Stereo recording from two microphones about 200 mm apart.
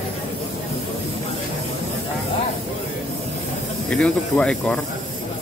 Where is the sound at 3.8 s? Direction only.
5° left (ahead or behind).